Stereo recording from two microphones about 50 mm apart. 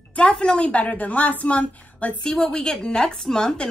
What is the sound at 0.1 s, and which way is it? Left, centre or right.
Speech, left.